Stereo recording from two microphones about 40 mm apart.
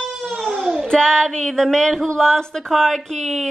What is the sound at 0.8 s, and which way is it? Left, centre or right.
Child singing, centre.